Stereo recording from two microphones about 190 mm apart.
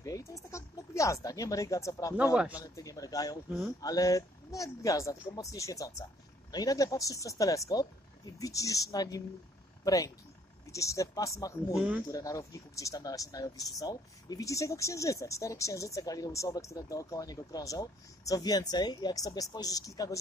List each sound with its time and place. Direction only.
0.0 s a sound: 15° left (ahead or behind)
2.3 s speech: 5° right (ahead or behind)
2.6 s speech: 20° left (ahead or behind)